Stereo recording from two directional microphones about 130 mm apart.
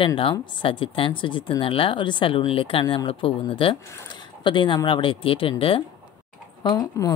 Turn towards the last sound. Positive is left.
turn(degrees=30)  # may be behind; listen again after turning